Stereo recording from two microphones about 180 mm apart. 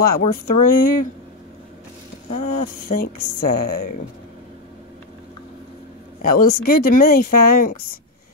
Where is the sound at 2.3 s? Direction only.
45° left (ahead or behind).